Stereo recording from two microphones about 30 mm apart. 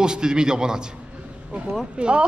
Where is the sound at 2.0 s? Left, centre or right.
Right.